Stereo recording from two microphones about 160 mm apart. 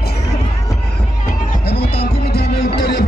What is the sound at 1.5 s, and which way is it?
Music, 75° left (ahead or behind).